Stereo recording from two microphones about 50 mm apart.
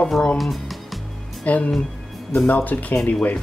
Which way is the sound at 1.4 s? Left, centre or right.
Left.